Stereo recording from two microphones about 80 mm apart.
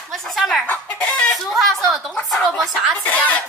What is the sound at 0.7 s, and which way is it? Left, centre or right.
Chicken, centre.